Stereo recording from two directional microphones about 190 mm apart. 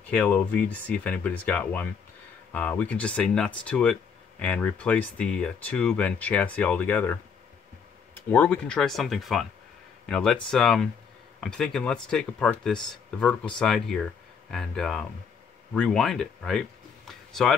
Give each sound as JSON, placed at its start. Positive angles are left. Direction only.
{"t": 0.1, "sound": "speech", "side_deg": 5}